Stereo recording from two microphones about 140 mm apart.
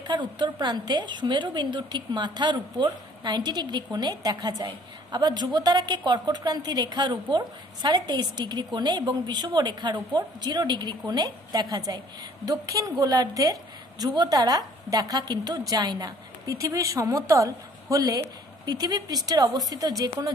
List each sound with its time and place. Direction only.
0.0 s a woman's voice: 30° right (ahead or behind)